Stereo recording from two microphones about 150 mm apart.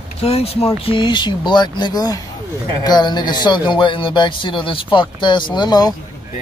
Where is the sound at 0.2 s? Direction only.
40° left (ahead or behind).